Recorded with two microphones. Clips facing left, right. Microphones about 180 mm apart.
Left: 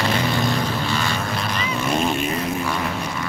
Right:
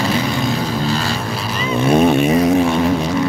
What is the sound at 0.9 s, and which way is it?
Vehicle, 35° right (ahead or behind).